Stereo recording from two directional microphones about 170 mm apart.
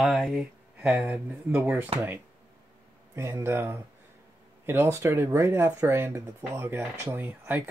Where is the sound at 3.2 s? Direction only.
15° right (ahead or behind).